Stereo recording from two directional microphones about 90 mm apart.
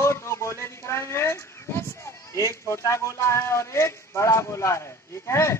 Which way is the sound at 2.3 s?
35° left (ahead or behind).